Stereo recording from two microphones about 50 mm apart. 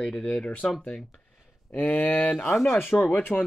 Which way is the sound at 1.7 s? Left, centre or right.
Left.